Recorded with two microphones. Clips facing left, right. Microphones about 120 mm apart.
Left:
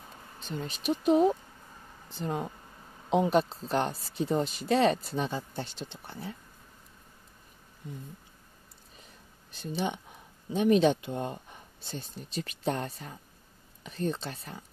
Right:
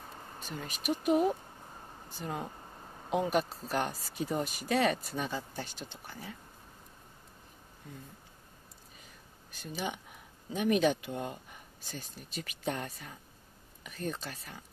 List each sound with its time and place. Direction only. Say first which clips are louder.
0.6 s speech: left 3 dB; 30° left (ahead or behind)
10.5 s speech: left 5 dB; 30° left (ahead or behind)